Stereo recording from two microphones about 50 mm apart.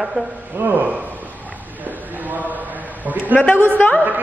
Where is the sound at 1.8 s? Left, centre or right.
Right.